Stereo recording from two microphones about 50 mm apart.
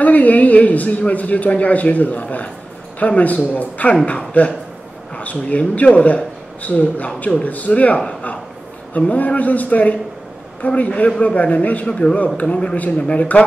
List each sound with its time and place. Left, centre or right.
0.0 s a man's voice: left
5.1 s a sound: left
5.8 s a man's voice: left
11.9 s a man's voice: centre
12.7 s a man's voice: left